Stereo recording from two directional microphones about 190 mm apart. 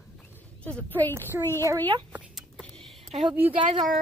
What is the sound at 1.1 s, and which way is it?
Speech, 15° right (ahead or behind).